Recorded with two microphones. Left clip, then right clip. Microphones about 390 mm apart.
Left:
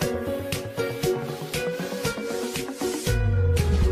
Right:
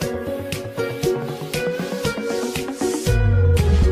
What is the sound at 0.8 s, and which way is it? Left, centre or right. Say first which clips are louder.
Music: right 4 dB; right.